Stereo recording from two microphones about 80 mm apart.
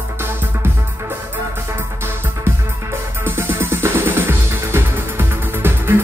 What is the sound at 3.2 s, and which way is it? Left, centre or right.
Music, right.